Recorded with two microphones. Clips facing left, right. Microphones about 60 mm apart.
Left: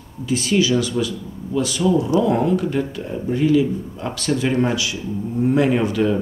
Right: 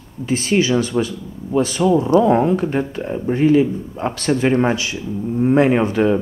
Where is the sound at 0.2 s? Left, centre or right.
Right.